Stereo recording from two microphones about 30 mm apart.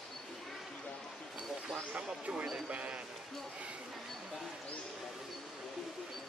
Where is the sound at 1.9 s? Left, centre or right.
Right.